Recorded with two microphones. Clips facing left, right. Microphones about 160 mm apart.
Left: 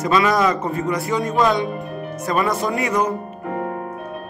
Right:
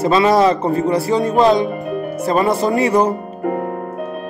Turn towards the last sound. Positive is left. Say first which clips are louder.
# right 6 dB
turn(degrees=-30)  # may be behind; listen again after turning